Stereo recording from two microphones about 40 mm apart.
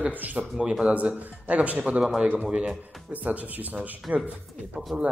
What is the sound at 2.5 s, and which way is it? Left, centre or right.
Speech, right.